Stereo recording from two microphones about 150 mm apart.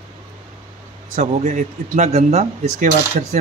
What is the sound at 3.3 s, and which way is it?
Speech, 60° right (ahead or behind).